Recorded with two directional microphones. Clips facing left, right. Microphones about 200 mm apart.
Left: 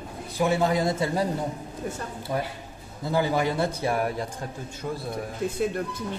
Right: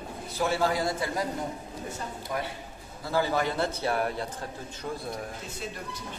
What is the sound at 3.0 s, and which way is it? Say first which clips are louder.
A man's voice: left 3 dB; 15° left (ahead or behind).